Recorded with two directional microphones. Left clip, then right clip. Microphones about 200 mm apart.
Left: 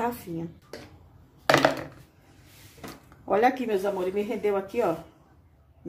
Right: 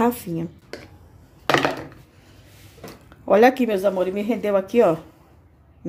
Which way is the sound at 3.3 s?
40° right (ahead or behind).